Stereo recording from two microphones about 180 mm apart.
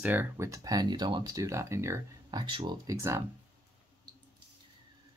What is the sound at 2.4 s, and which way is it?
Speech, 30° right (ahead or behind).